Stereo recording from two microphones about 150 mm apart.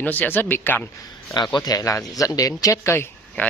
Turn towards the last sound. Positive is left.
turn(degrees=15)  # may be behind; listen again after turning